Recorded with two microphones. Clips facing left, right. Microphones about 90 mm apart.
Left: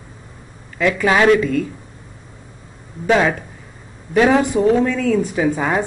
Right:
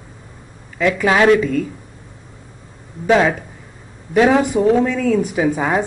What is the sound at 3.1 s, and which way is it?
Speech, 10° right (ahead or behind).